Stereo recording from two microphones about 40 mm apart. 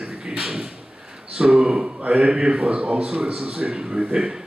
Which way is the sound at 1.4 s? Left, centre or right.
Right.